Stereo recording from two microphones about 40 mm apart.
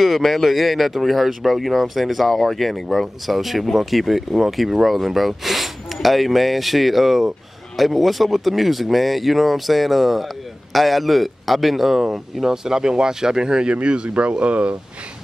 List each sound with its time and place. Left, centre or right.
0.0 s speech: centre; by 14.8 s right